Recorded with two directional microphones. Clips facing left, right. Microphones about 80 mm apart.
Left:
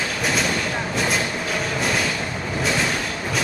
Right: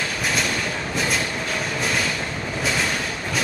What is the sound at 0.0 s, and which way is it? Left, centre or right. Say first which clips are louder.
Train: left 2 dB; centre.